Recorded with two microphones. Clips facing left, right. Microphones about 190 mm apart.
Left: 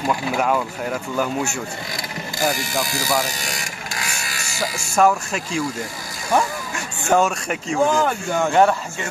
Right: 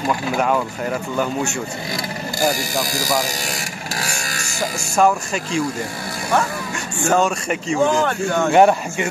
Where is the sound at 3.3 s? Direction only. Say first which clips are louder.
Right 3 dB; 40° right (ahead or behind).